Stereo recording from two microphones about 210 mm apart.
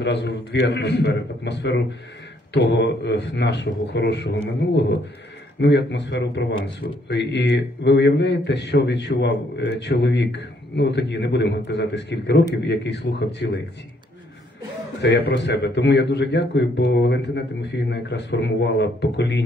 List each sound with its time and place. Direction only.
0.0 s a man's voice: 55° left (ahead or behind)
15.0 s a man's voice: 55° left (ahead or behind)